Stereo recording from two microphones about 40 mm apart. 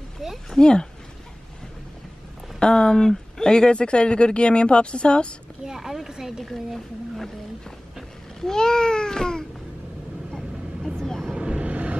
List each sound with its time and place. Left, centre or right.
0.2 s speech: centre
0.6 s speech: centre
2.6 s speech: centre
5.7 s speech: centre
6.4 s speech: centre
8.4 s speech: centre
11.0 s speech: centre
11.3 s vehicle: right